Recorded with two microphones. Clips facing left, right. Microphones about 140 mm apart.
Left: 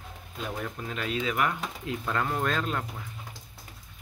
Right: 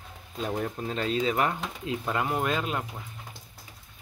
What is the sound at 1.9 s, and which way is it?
Speech, 15° right (ahead or behind).